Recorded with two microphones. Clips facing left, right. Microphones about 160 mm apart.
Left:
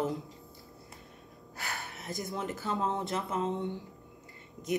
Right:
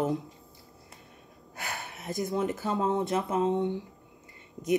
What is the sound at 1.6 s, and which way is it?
Speech, 15° right (ahead or behind).